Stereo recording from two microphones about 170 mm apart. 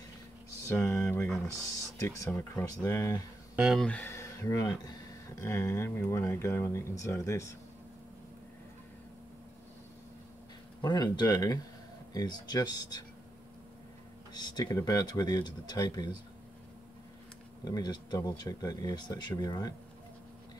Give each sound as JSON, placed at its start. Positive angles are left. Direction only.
{"t": 0.7, "sound": "speech", "side_deg": 10}
{"t": 3.5, "sound": "speech", "side_deg": 0}
{"t": 10.8, "sound": "speech", "side_deg": 25}
{"t": 14.3, "sound": "speech", "side_deg": 25}
{"t": 17.6, "sound": "speech", "side_deg": 25}